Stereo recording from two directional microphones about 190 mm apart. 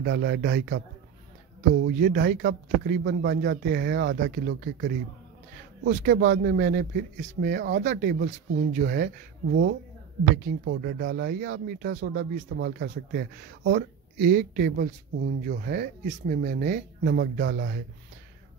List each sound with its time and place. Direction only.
0.0 s a man's voice: 65° right (ahead or behind)
2.0 s a man's voice: 50° right (ahead or behind)
5.9 s speech: 50° right (ahead or behind)
17.1 s a man's voice: 65° right (ahead or behind)